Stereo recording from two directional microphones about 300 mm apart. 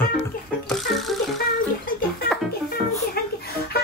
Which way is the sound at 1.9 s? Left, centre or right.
Left.